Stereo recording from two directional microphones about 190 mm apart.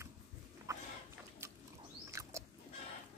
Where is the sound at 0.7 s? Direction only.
15° right (ahead or behind).